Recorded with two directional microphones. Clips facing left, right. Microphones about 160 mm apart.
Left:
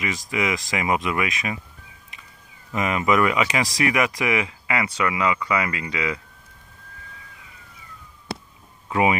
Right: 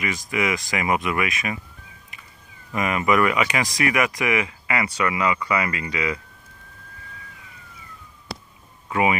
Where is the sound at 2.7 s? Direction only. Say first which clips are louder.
Even; 25° left (ahead or behind).